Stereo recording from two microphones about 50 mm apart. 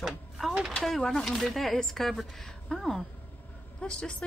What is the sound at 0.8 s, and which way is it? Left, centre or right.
Speech, centre.